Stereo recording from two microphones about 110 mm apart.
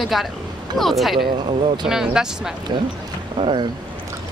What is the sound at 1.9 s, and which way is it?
Speech, 5° right (ahead or behind).